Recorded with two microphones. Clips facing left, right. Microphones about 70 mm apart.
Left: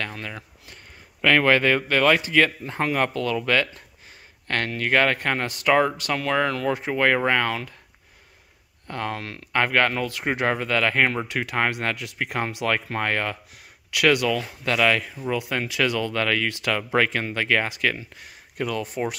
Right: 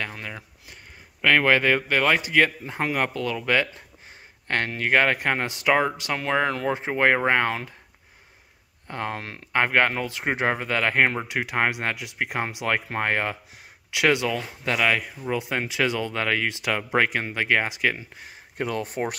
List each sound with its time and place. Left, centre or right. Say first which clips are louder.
0.0 s a sound: left 1 dB; centre
1.2 s speech: left 1 dB; centre; by 7.7 s right
8.8 s speech: left 1 dB; right
15.2 s speech: left 1 dB; right